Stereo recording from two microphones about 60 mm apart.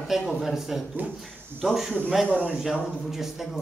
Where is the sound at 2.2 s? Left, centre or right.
Right.